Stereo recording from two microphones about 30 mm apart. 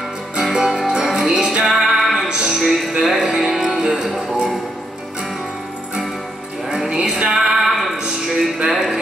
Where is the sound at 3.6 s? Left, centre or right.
Right.